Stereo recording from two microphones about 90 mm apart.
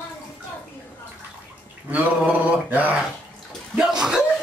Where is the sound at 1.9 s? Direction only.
15° right (ahead or behind).